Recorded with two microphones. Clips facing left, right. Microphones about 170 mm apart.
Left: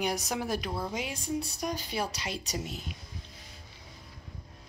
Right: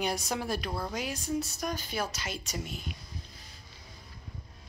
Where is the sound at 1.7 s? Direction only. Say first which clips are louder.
Left 1 dB; 30° left (ahead or behind).